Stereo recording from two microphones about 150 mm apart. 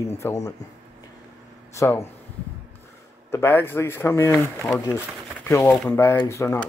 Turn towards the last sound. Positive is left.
turn(degrees=20)  # may be behind; listen again after turning